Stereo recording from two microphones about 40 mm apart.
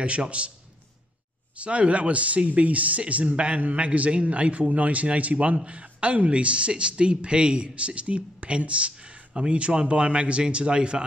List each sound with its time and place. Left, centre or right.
0.0 s a man's voice: right
1.6 s speech: right